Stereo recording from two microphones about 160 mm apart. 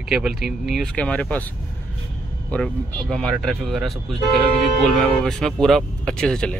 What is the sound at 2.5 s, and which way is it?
Speech, 5° left (ahead or behind).